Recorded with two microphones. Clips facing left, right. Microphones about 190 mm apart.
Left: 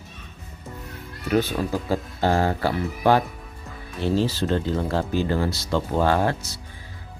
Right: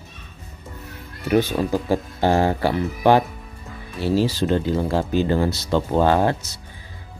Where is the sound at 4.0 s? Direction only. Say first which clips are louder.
Right 3 dB; 5° right (ahead or behind).